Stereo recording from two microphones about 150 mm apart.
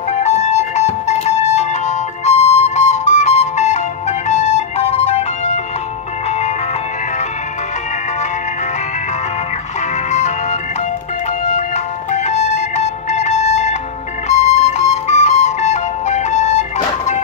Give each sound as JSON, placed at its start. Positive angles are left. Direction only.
{"t": 0.1, "sound": "music", "side_deg": 50}
{"t": 10.1, "sound": "music", "side_deg": 50}
{"t": 14.3, "sound": "flute", "side_deg": 50}